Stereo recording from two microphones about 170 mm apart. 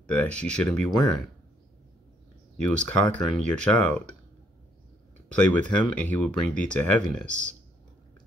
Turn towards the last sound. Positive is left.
turn(degrees=5)  # may be behind; listen again after turning